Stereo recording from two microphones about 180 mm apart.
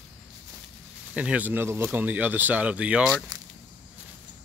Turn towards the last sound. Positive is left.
turn(degrees=-5)  # may be behind; listen again after turning